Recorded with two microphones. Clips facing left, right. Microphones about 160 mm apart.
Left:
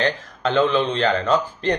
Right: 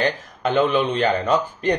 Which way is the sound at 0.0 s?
15° right (ahead or behind).